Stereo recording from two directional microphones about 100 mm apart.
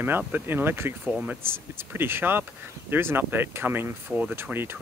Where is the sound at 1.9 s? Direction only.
20° right (ahead or behind).